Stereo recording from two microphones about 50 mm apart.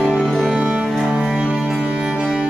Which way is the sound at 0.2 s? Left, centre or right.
Centre.